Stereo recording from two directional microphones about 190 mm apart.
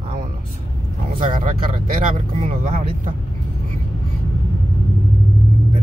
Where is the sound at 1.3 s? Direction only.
45° right (ahead or behind).